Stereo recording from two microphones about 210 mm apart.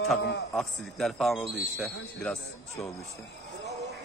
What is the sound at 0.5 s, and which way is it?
A man's voice, centre (ahead or behind).